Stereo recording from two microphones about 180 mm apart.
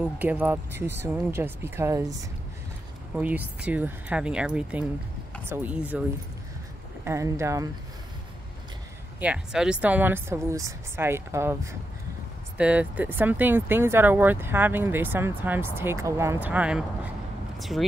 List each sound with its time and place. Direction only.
0.0 s speech: 10° right (ahead or behind)
3.2 s speech: 10° right (ahead or behind)
7.1 s speech: 15° right (ahead or behind)
9.2 s speech: 5° right (ahead or behind)